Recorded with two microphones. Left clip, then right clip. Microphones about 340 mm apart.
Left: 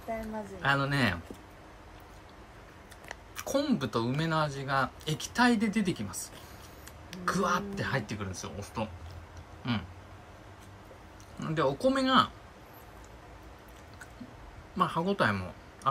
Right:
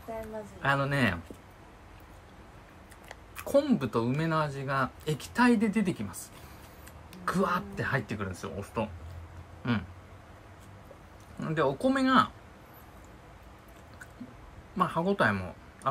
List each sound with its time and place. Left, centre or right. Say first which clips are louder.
0.6 s speech: even; centre
3.1 s speech: right 4 dB; centre
9.6 s a sound: right 2 dB; centre
11.3 s speech: right 1 dB; centre
14.8 s speech: right 1 dB; centre